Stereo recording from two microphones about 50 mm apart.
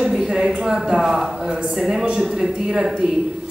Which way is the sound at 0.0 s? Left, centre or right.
Centre.